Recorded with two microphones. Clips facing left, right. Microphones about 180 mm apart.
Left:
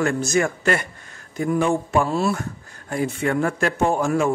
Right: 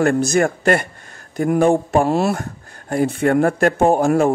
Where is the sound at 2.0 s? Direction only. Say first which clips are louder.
Right 5 dB; 70° right (ahead or behind).